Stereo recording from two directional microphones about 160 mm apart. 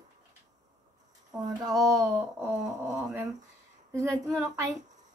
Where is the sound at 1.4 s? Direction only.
25° right (ahead or behind).